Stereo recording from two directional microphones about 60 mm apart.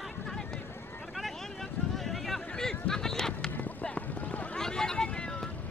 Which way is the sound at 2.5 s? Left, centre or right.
Centre.